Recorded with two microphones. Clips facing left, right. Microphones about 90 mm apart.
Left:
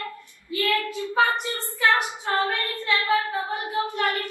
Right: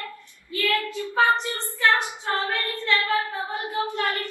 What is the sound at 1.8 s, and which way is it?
Female singing, 20° left (ahead or behind).